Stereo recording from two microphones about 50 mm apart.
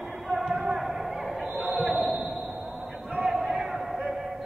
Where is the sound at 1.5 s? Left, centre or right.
Right.